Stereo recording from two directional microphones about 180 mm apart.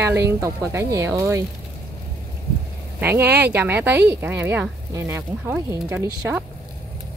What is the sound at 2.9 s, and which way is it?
Speech, 10° right (ahead or behind).